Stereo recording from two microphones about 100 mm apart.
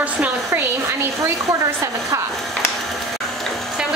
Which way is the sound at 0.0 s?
15° right (ahead or behind).